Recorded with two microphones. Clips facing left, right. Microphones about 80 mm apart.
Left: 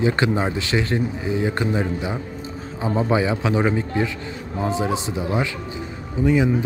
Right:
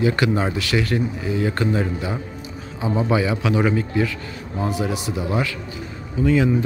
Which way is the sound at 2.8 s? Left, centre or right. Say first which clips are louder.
Even; left.